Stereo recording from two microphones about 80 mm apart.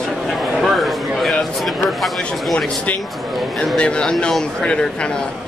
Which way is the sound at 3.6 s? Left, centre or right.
Centre.